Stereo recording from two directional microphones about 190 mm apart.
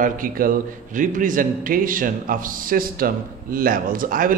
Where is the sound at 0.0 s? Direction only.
45° right (ahead or behind).